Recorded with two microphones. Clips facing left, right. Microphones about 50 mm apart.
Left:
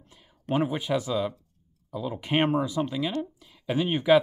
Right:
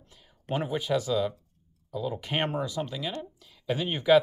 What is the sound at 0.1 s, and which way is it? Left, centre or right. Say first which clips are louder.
Speech: left 4 dB; centre.